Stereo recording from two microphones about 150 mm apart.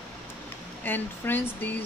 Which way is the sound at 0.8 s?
10° left (ahead or behind).